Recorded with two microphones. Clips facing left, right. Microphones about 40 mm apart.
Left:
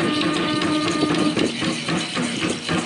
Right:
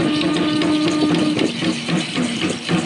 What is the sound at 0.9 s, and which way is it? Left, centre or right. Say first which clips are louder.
Music: right 3 dB; centre.